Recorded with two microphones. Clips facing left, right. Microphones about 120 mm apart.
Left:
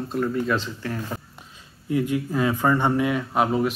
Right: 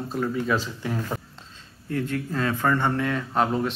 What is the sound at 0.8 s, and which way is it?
Speech, 20° right (ahead or behind).